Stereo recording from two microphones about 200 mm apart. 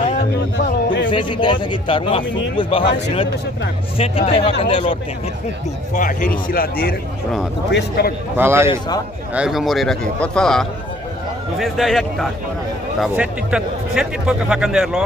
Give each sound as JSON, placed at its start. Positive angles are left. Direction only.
{"t": 1.1, "sound": "speech", "side_deg": 25}
{"t": 5.9, "sound": "a man's voice", "side_deg": 40}
{"t": 8.4, "sound": "a man's voice", "side_deg": -10}
{"t": 8.6, "sound": "speech", "side_deg": 20}
{"t": 9.3, "sound": "speech", "side_deg": -5}